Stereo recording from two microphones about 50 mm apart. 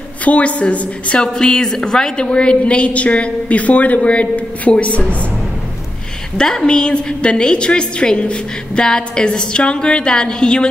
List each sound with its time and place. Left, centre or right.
0.2 s a woman's voice: left
6.3 s a woman's voice: centre